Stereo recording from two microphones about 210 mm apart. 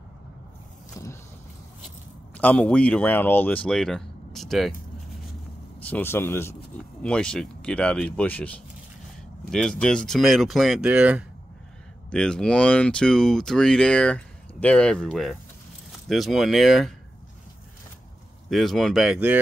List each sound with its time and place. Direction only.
1.0 s vehicle: 15° left (ahead or behind)
2.3 s speech: 5° left (ahead or behind)
18.5 s speech: centre (ahead or behind)